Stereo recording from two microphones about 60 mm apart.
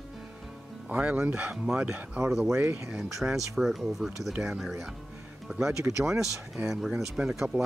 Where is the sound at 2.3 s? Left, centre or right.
Centre.